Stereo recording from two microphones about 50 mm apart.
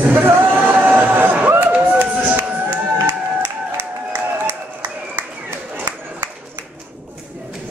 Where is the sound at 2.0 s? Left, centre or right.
Right.